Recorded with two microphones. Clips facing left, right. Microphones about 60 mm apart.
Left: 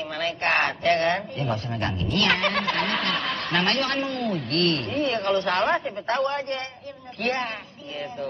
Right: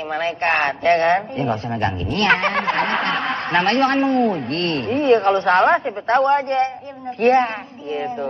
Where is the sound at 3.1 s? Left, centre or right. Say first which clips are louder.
Right 6 dB; centre.